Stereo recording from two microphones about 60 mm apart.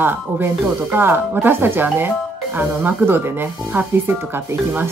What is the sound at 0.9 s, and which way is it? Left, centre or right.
Speech, right.